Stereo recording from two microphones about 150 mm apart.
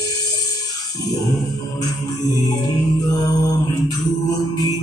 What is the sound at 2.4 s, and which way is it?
Music, 25° left (ahead or behind).